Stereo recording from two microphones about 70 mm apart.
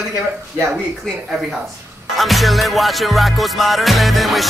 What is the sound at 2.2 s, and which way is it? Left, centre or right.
Music, centre.